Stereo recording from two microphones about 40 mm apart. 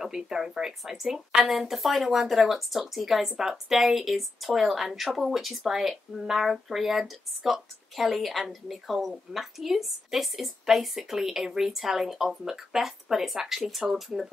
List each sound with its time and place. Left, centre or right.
0.0 s speech: centre